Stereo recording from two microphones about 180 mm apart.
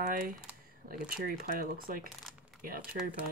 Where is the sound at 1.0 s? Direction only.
55° right (ahead or behind).